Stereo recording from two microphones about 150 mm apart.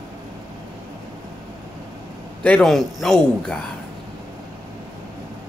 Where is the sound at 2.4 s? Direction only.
5° left (ahead or behind).